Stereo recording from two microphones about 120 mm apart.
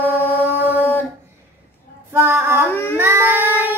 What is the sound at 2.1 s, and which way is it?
Female singing, 20° right (ahead or behind).